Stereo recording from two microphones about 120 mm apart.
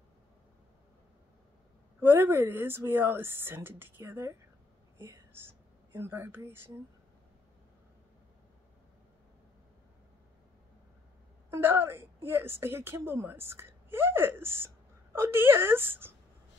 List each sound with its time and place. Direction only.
2.0 s a woman's voice: 20° right (ahead or behind)
4.9 s whispering: 20° right (ahead or behind)
5.9 s a woman's voice: 20° right (ahead or behind)
11.5 s a woman's voice: 20° right (ahead or behind)